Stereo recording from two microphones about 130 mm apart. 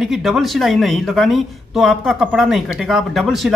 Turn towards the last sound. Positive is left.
turn(degrees=0)  # may be behind; listen again after turning